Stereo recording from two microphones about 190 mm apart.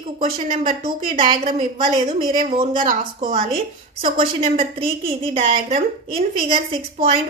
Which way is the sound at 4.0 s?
35° right (ahead or behind).